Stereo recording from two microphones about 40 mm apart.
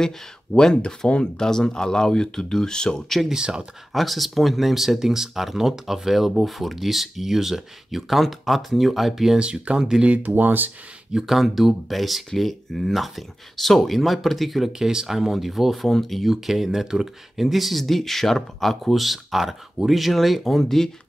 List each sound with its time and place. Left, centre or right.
0.0 s speech: centre
3.3 s speech: right
3.9 s speech: centre
9.4 s speech: right
10.0 s speech: right
11.1 s speech: centre
14.7 s speech: centre
16.3 s speech: centre
20.6 s speech: centre